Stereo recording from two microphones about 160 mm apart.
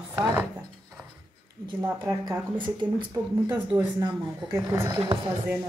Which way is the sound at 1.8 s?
20° right (ahead or behind).